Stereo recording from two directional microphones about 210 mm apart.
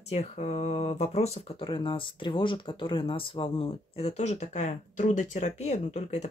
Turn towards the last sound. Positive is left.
turn(degrees=35)  # may be behind; listen again after turning